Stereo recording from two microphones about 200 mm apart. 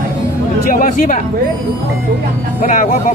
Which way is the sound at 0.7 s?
45° left (ahead or behind).